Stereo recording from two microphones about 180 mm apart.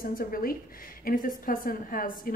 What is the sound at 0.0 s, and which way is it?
A woman's voice, 55° left (ahead or behind).